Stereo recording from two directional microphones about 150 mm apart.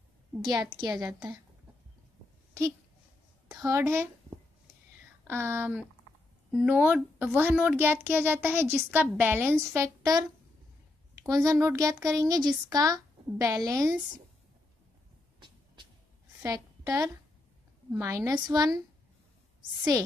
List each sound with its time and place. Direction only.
0.4 s speech: 25° right (ahead or behind)
3.4 s a child's voice: 20° right (ahead or behind)
9.8 s speech: 25° right (ahead or behind)
11.2 s speech: 25° right (ahead or behind)
15.4 s a sound: 30° right (ahead or behind)
16.4 s a woman's voice: 25° right (ahead or behind)